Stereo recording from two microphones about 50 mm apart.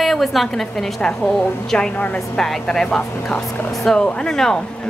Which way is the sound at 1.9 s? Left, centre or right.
Left.